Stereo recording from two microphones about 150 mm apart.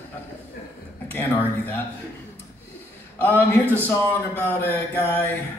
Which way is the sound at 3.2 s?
10° left (ahead or behind).